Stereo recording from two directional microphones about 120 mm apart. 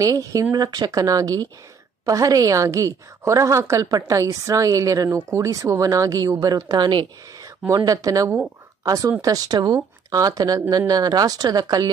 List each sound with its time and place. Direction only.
0.0 s a woman's voice: 30° right (ahead or behind)